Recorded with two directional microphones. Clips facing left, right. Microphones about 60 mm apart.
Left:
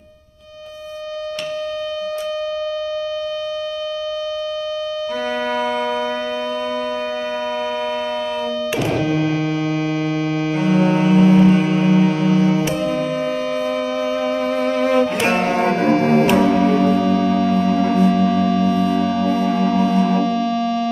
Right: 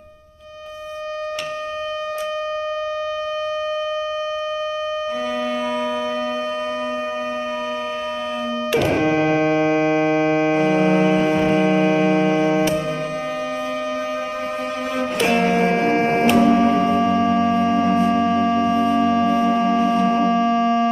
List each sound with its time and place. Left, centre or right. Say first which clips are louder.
8.7 s music: right 3 dB; right
14.9 s music: left 1 dB; left
15.7 s music: left 2 dB; right